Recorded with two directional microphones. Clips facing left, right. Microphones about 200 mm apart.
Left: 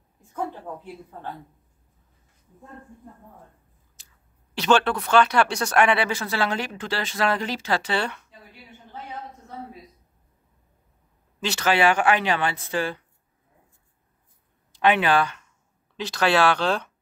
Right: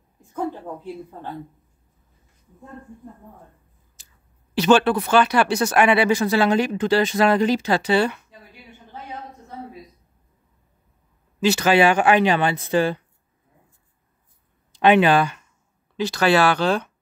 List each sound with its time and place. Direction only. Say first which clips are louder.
4.6 s speech: right 5 dB; 5° right (ahead or behind)
11.4 s speech: right 5 dB; 10° right (ahead or behind)
14.7 s speech: right 5 dB; 20° right (ahead or behind)
16.0 s speech: right 3 dB; centre (ahead or behind)